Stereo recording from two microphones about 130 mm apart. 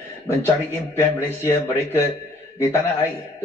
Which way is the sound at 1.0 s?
15° left (ahead or behind).